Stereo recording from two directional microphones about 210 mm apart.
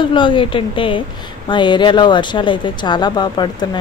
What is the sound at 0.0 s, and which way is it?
Speech, 25° left (ahead or behind).